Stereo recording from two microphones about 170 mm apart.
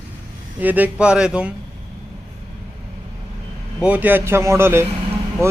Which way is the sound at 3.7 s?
10° right (ahead or behind).